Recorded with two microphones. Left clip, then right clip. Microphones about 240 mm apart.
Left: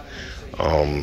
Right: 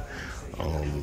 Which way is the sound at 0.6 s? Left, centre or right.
Centre.